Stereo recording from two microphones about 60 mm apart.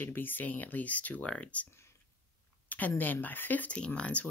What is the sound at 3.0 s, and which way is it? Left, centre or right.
Speech, left.